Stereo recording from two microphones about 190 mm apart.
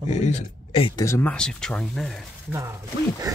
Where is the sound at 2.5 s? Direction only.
15° right (ahead or behind).